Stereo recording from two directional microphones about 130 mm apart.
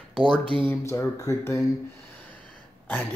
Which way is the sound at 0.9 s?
20° left (ahead or behind).